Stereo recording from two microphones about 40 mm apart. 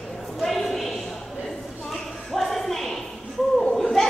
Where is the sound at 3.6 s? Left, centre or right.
Centre.